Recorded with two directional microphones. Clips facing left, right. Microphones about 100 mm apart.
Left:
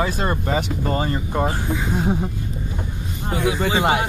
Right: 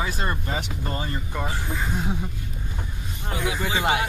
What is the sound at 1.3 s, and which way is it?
Speech, 45° left (ahead or behind).